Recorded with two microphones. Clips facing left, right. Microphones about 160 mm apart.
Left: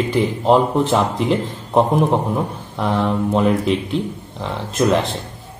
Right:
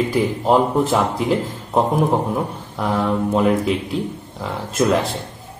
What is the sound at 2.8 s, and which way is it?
Speech, 5° right (ahead or behind).